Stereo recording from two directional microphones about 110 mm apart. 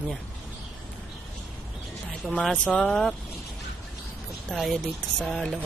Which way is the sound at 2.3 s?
10° left (ahead or behind).